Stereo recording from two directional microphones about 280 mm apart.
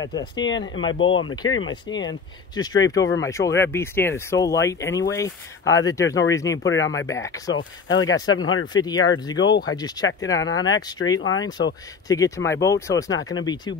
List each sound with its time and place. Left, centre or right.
0.0 s speech: centre
0.9 s speech: left
1.7 s speech: centre
6.6 s speech: left
7.1 s speech: centre
7.5 s speech: left
8.7 s speech: centre
10.3 s speech: left
10.6 s speech: centre
11.1 s speech: left
12.1 s speech: centre